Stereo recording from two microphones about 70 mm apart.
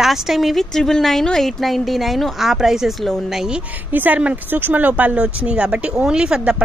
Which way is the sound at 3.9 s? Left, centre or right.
Right.